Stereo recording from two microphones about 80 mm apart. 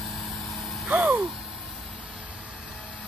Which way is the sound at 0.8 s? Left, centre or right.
Centre.